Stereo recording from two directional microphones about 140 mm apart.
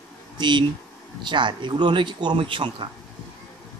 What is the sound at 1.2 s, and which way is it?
Speech, 35° right (ahead or behind).